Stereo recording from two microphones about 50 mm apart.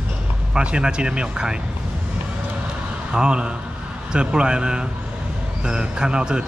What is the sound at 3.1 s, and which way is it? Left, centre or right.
A man's voice, centre.